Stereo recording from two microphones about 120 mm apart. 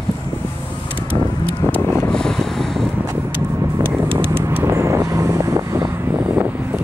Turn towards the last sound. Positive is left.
turn(degrees=-25)  # may be behind; listen again after turning